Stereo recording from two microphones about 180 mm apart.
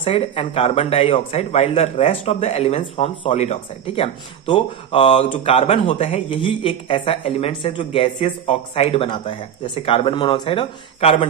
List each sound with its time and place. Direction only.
0.0 s speech: 30° left (ahead or behind)